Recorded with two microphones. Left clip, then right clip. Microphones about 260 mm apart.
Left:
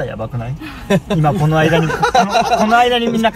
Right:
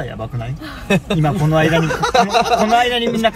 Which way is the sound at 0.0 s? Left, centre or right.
Centre.